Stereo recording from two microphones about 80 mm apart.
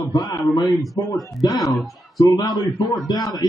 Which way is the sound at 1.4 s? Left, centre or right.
Left.